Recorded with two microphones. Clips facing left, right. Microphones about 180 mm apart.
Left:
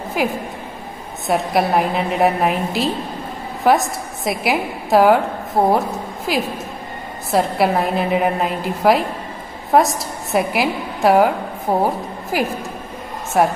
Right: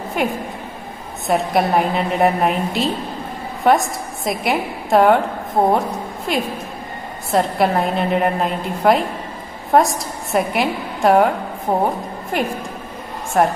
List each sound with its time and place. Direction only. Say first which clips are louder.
0.2 s a woman's voice: even; centre (ahead or behind)